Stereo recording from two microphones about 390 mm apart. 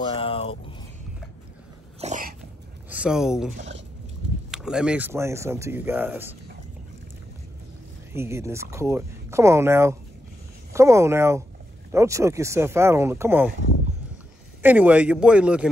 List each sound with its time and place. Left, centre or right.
0.0 s a sound: centre
2.0 s dog: centre
2.9 s speech: centre
3.5 s speech: centre
4.5 s speech: centre
8.1 s speech: centre
14.6 s speech: centre